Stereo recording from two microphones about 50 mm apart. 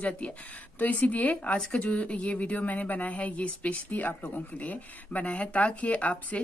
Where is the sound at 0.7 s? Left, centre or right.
Left.